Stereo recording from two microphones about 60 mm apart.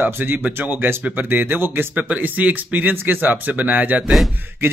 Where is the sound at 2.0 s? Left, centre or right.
Right.